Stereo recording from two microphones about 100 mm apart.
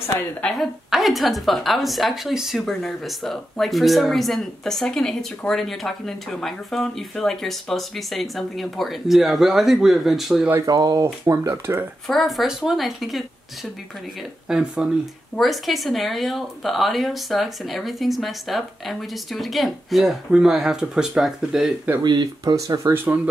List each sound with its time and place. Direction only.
0.4 s speech: 5° left (ahead or behind)
10.6 s speech: 40° right (ahead or behind)
12.1 s speech: centre (ahead or behind)
14.5 s speech: 10° right (ahead or behind)
22.0 s speech: 45° right (ahead or behind)
22.9 s speech: 20° right (ahead or behind)